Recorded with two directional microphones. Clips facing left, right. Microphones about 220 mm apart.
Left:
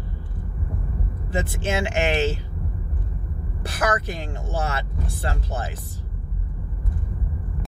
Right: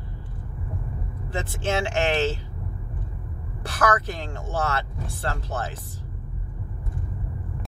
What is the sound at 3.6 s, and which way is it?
Speech, 15° left (ahead or behind).